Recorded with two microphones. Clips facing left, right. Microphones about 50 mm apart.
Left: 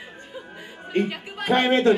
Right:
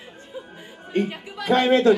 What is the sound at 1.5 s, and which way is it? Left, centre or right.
Speech, left.